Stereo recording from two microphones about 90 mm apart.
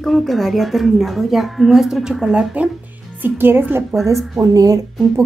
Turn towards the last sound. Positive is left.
turn(degrees=-40)  # may be behind; listen again after turning